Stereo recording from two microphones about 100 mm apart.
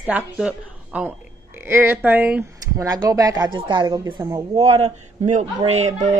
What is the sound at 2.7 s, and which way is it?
Speech, 35° right (ahead or behind).